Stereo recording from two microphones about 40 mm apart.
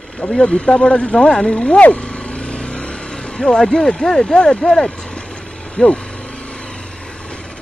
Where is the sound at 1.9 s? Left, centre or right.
Left; by 4.9 s centre.